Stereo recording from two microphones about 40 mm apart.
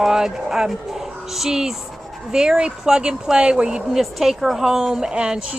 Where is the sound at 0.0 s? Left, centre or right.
Centre.